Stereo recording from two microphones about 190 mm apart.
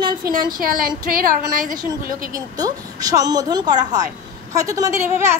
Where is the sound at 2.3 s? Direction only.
20° right (ahead or behind).